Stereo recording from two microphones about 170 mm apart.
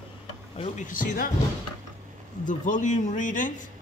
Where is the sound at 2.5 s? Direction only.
50° left (ahead or behind).